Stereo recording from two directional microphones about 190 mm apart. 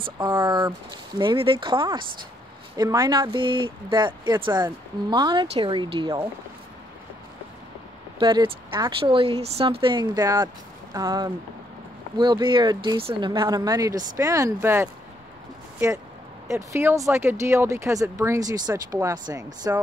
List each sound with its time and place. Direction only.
0.0 s speech: 25° right (ahead or behind)
8.2 s speech: 25° right (ahead or behind)
16.4 s speech: 15° right (ahead or behind)